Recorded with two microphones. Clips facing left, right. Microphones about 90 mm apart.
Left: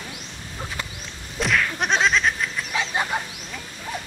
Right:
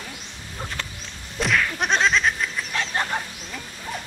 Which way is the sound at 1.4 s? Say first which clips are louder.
Even; centre (ahead or behind).